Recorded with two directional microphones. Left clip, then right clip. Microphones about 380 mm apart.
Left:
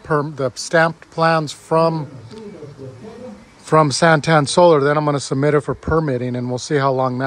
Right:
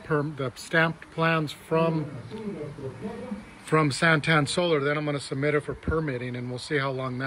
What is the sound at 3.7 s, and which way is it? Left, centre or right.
Speech, centre.